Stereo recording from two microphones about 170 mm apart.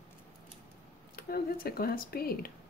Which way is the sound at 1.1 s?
60° left (ahead or behind).